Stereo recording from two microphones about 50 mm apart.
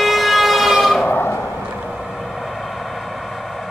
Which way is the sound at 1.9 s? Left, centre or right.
Centre.